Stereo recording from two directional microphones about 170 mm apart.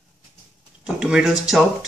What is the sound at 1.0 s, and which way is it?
Speech, 5° right (ahead or behind).